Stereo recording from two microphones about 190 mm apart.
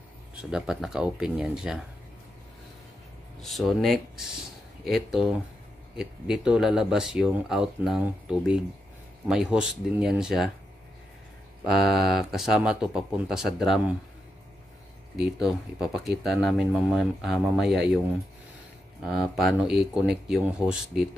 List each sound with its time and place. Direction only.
0.3 s speech: 5° right (ahead or behind)
3.4 s speech: centre (ahead or behind)
11.6 s speech: centre (ahead or behind)
15.4 s speech: centre (ahead or behind)
19.0 s speech: centre (ahead or behind)